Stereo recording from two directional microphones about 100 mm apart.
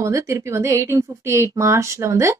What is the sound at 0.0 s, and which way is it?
A woman's voice, 30° right (ahead or behind).